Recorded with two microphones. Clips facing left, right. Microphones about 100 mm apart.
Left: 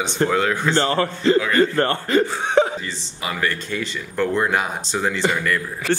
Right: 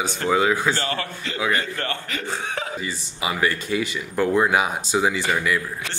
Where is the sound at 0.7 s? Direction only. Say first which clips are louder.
Left 8 dB; 35° left (ahead or behind).